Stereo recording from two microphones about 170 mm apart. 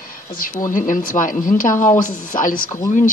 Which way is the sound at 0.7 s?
50° left (ahead or behind).